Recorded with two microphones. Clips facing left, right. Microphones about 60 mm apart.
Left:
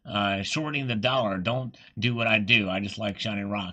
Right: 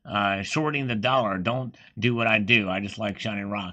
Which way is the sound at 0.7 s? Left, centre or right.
Right.